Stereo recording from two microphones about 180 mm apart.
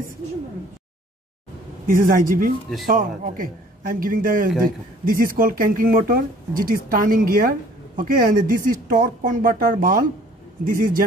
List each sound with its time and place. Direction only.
1.9 s speech: 50° right (ahead or behind)